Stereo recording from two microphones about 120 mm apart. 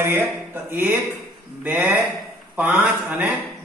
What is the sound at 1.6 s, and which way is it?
A man's voice, 15° right (ahead or behind).